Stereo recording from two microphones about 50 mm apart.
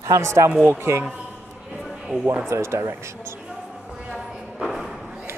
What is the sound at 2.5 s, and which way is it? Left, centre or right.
Speech, right.